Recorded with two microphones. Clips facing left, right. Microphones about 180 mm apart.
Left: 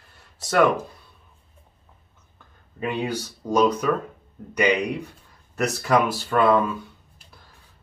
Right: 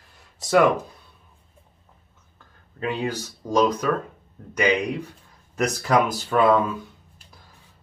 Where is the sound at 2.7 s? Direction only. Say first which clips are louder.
Even; 15° left (ahead or behind).